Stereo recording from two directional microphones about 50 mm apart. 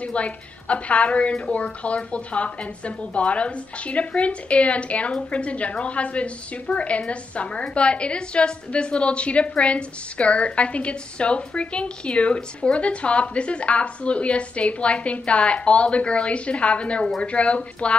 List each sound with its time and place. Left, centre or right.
0.0 s a woman's voice: left